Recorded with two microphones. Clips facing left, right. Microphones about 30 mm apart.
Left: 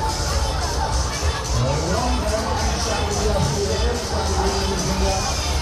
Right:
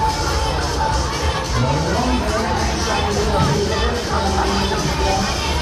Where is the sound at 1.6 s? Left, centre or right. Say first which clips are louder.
Right 2 dB; right.